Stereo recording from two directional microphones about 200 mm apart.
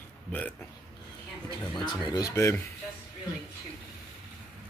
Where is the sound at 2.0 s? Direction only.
20° left (ahead or behind).